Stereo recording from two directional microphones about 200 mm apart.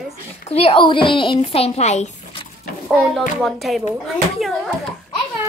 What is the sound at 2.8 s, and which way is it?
A woman's voice, centre (ahead or behind).